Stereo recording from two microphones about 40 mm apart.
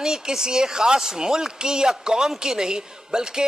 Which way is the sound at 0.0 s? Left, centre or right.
Centre.